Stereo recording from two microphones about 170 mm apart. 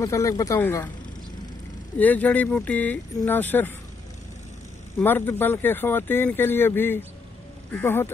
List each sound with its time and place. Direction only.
0.0 s speech: 20° left (ahead or behind)
2.0 s speech: 10° left (ahead or behind)
5.0 s speech: 10° left (ahead or behind)